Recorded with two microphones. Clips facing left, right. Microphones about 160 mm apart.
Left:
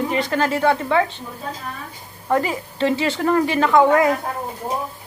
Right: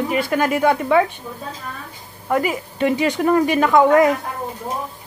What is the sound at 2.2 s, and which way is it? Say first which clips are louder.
A woman's voice: even; 10° right (ahead or behind).